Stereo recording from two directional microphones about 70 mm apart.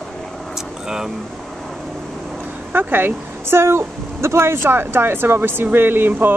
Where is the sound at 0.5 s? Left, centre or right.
Centre.